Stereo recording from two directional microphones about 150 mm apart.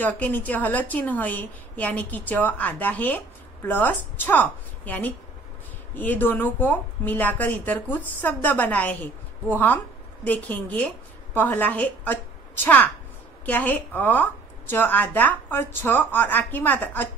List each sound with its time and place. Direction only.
0.0 s speech: 10° left (ahead or behind)